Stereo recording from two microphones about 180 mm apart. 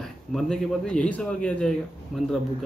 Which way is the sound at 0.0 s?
Centre (ahead or behind).